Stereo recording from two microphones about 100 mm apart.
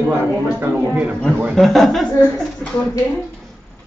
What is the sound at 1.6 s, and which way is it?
Speech, centre (ahead or behind).